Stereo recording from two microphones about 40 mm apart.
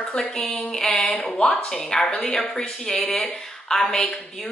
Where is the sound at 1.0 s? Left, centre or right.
Left.